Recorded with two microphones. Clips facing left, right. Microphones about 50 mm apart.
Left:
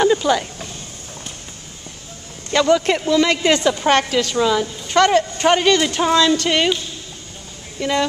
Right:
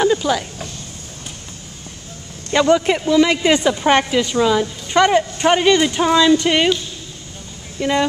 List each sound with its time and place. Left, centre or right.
0.0 s a sound: centre
2.5 s a woman's voice: centre
7.8 s a woman's voice: centre